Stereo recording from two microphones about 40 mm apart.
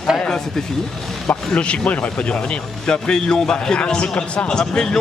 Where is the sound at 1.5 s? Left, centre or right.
Left.